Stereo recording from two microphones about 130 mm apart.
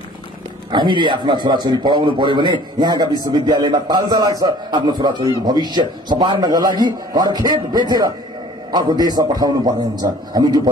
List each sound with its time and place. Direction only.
0.7 s a man's voice: 35° right (ahead or behind)